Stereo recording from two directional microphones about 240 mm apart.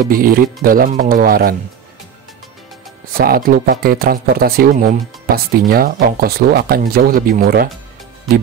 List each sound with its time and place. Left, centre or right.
0.0 s speech: right
3.1 s speech: right